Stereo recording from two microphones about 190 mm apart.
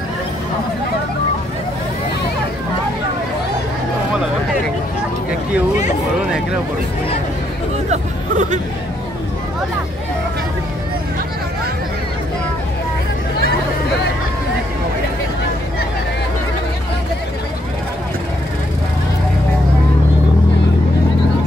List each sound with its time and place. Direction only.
7.9 s chatter: 40° right (ahead or behind)